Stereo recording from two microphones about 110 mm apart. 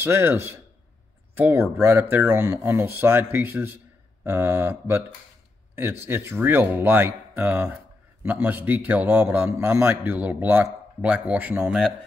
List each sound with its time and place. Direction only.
0.0 s speech: 25° right (ahead or behind)